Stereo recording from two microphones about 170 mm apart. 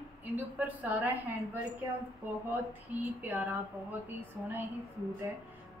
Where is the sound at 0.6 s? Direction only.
10° right (ahead or behind).